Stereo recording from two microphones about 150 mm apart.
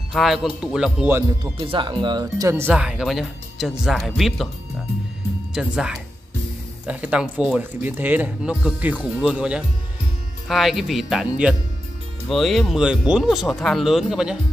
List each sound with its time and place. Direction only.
0.1 s speech: centre (ahead or behind)
1.4 s speech: 35° right (ahead or behind)
2.7 s speech: 5° right (ahead or behind)
5.5 s speech: 5° right (ahead or behind)